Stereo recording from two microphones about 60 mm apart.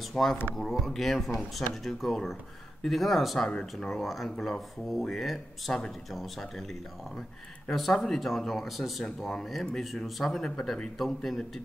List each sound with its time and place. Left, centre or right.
0.1 s speech: centre
3.4 s speech: centre
5.7 s a man's voice: centre
7.7 s a man's voice: centre